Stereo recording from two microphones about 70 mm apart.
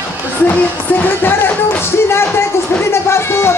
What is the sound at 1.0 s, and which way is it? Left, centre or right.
Music, left.